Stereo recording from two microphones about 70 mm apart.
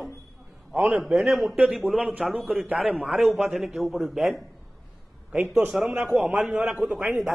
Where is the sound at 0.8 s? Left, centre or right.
Centre.